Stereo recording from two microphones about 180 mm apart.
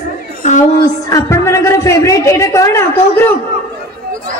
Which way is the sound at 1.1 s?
15° left (ahead or behind).